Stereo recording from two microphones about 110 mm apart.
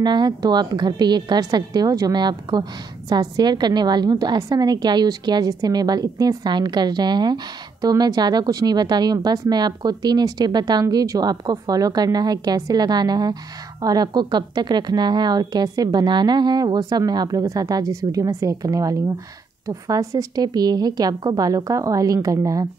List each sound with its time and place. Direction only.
0.0 s speech: 40° right (ahead or behind)